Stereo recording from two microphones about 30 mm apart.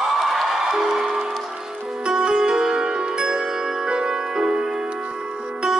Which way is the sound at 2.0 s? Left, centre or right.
Right.